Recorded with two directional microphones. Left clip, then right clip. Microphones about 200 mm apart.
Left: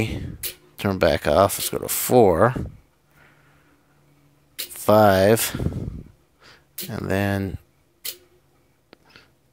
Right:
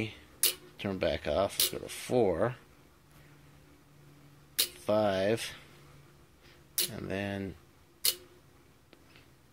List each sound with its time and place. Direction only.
0.7 s speech: 45° left (ahead or behind)
4.8 s speech: 50° left (ahead or behind)